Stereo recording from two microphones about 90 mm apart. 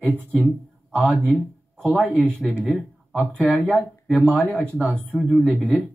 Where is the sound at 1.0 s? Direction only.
20° right (ahead or behind).